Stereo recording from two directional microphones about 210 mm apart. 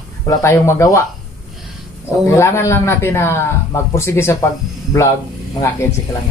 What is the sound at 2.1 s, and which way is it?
Speech, 15° left (ahead or behind).